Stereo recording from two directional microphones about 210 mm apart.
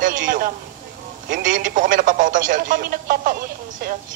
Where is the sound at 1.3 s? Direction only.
40° right (ahead or behind).